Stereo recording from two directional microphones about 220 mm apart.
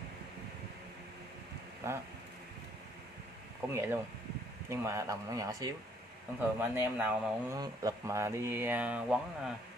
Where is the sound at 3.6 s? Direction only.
10° right (ahead or behind).